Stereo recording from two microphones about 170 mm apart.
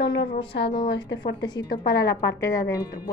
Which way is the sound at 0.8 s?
90° left.